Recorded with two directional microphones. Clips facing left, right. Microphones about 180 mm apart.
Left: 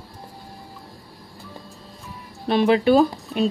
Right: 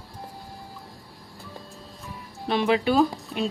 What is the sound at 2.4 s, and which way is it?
Speech, 40° left (ahead or behind).